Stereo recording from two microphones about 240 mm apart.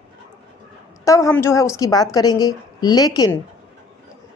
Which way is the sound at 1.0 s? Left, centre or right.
Centre.